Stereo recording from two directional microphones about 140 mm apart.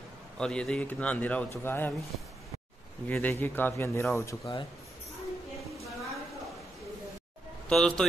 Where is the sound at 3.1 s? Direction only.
10° left (ahead or behind).